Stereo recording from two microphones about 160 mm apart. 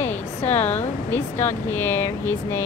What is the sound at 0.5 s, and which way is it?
Speech, 10° left (ahead or behind).